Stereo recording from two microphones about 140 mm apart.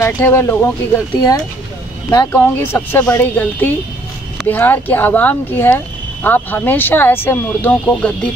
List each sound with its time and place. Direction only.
0.0 s speech: 20° left (ahead or behind)
2.0 s speech: 20° left (ahead or behind)